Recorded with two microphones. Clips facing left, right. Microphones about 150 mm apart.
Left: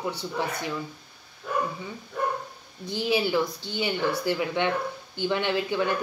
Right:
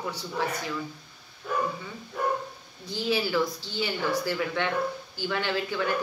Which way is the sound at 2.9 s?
20° left (ahead or behind).